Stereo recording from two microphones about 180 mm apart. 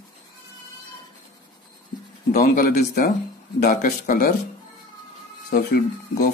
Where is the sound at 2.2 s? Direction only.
50° left (ahead or behind).